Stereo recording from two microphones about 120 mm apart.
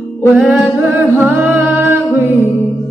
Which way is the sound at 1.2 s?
15° right (ahead or behind).